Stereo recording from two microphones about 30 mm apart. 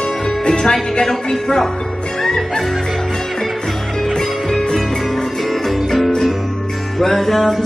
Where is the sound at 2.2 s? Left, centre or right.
Centre.